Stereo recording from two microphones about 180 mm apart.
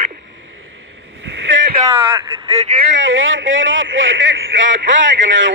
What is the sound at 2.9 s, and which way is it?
A man's voice, 90° right.